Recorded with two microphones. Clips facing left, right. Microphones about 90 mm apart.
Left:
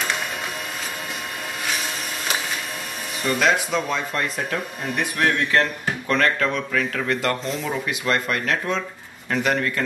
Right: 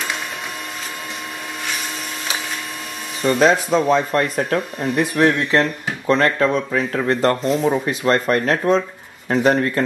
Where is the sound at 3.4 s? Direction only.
35° right (ahead or behind).